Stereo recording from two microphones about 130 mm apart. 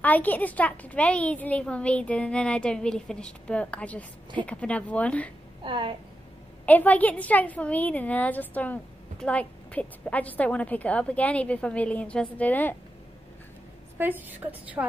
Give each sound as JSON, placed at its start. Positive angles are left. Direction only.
{"t": 0.0, "sound": "a woman's voice", "side_deg": 15}
{"t": 5.6, "sound": "a woman's voice", "side_deg": -40}
{"t": 6.6, "sound": "a woman's voice", "side_deg": 10}
{"t": 13.9, "sound": "a woman's voice", "side_deg": -15}